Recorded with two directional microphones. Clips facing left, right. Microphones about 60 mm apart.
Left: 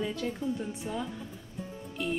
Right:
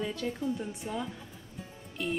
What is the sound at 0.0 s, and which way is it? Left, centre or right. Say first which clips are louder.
A woman's voice: left 1 dB; centre.